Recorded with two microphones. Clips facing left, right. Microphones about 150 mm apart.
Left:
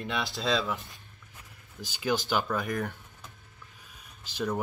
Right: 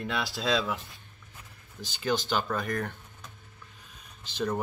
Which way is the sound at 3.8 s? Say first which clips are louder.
Right 1 dB; 5° left (ahead or behind).